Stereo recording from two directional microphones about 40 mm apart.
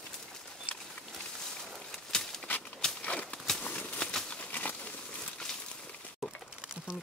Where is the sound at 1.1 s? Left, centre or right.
Centre.